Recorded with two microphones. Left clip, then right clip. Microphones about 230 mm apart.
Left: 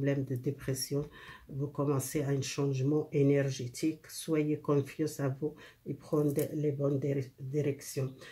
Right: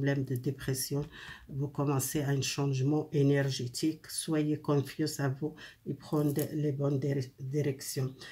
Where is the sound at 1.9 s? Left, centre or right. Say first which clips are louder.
Even; centre.